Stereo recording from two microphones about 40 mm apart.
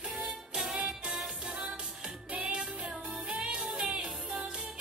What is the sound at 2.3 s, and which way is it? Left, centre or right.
Music, right.